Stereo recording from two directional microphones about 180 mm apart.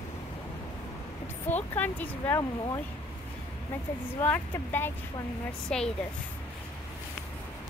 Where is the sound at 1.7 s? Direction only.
10° left (ahead or behind).